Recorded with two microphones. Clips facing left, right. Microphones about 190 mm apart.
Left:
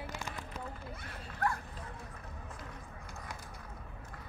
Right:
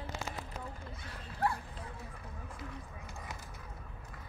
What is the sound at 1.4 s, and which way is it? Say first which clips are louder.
Dog: right 1 dB; 30° right (ahead or behind).